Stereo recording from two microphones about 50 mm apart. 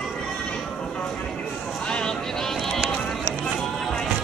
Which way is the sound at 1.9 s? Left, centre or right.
Centre.